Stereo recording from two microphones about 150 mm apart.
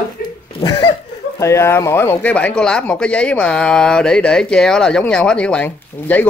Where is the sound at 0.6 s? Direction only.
30° left (ahead or behind).